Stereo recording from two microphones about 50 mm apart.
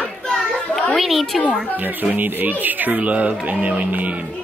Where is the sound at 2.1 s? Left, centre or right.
Right.